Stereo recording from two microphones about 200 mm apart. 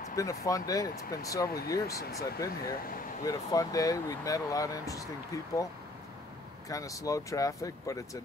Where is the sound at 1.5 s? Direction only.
50° left (ahead or behind).